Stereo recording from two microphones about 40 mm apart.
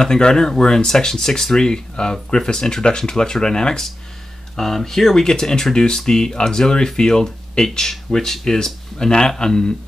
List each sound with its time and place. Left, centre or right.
0.0 s speech: centre